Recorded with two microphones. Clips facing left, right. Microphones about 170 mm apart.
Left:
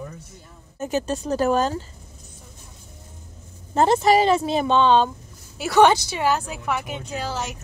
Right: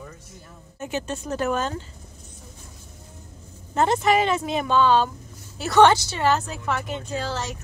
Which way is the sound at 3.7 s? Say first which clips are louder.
Left 3 dB; 30° left (ahead or behind).